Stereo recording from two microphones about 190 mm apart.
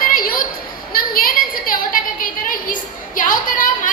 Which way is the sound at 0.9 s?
50° left (ahead or behind).